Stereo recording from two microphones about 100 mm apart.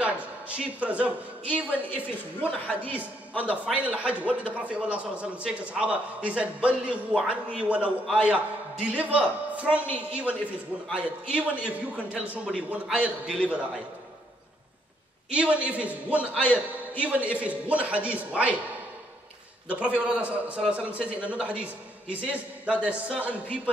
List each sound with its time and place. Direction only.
0.0 s a man's voice: 15° right (ahead or behind)
2.6 s a man's voice: 15° left (ahead or behind)
3.0 s a man's voice: 10° right (ahead or behind)
15.2 s a man's voice: 10° right (ahead or behind)
19.7 s a man's voice: 10° right (ahead or behind)